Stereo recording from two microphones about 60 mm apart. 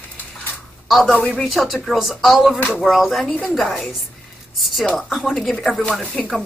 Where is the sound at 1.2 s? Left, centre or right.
Centre.